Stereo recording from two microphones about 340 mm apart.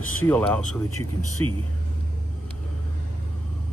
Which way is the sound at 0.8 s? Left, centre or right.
Left.